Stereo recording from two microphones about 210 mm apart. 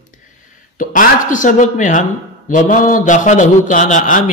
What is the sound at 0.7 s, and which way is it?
A man's voice, 40° left (ahead or behind).